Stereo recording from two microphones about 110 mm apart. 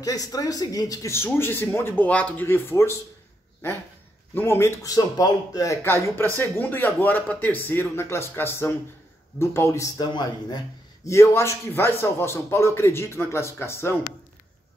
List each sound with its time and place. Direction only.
0.0 s speech: 35° left (ahead or behind)
4.3 s speech: 20° left (ahead or behind)
4.9 s speech: 35° left (ahead or behind)
9.9 s speech: 40° left (ahead or behind)
11.1 s speech: 30° left (ahead or behind)